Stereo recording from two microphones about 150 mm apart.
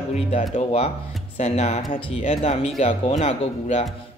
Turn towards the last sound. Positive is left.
turn(degrees=45)  # may be behind; listen again after turning